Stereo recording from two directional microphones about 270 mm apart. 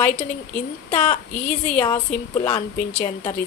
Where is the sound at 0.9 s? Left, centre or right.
Left.